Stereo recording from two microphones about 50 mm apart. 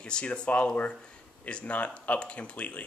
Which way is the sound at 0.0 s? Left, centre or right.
Left.